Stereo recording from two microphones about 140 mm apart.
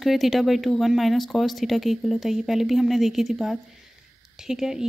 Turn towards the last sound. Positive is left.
turn(degrees=-5)  # may be behind; listen again after turning